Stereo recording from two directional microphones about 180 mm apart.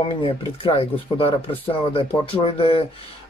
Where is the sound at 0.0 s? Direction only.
30° left (ahead or behind).